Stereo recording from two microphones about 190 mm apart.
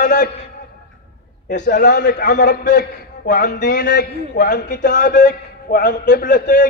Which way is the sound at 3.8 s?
65° left (ahead or behind).